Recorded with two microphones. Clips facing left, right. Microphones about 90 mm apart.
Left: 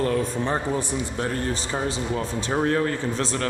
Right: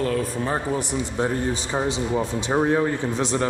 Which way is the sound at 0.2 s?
5° right (ahead or behind).